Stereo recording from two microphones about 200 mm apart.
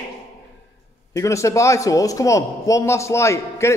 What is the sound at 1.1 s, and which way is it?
A man's voice, 15° left (ahead or behind).